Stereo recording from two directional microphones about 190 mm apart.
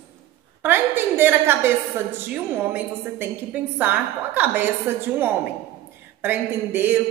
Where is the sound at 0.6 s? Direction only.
10° right (ahead or behind).